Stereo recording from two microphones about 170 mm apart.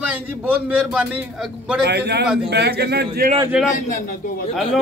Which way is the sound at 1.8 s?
75° right (ahead or behind).